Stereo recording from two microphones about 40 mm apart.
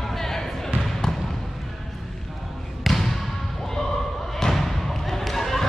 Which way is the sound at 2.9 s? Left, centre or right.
Centre.